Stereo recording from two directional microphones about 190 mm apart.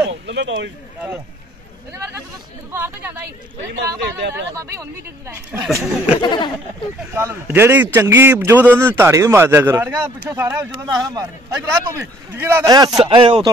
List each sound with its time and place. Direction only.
0.3 s speech: 75° right (ahead or behind)
3.7 s speech: 70° right (ahead or behind)
4.6 s a man's voice: 15° right (ahead or behind)
6.2 s speech: 25° left (ahead or behind)
7.2 s a man's voice: 15° right (ahead or behind)
12.6 s speech: 20° right (ahead or behind)